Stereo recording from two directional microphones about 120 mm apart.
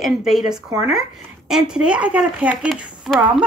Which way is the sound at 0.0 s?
5° right (ahead or behind).